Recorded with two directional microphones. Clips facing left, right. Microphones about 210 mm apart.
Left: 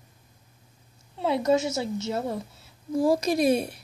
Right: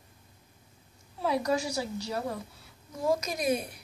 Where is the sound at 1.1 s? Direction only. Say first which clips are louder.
Left 5 dB; 25° left (ahead or behind).